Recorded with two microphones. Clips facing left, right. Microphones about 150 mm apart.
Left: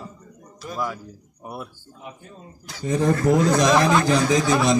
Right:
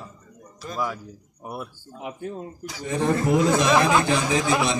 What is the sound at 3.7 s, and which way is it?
Speech, 10° right (ahead or behind).